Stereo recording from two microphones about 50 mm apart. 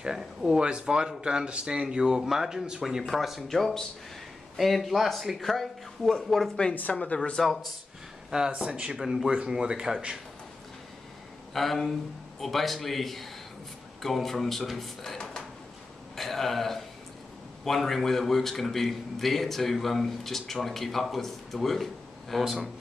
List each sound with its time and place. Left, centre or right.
0.0 s speech: centre
0.5 s speech: centre
3.0 s a man's voice: centre
6.9 s speech: left
7.3 s a man's voice: centre
8.5 s speech: right
8.9 s speech: centre
11.5 s a man's voice: centre
16.2 s a man's voice: centre
22.4 s speech: centre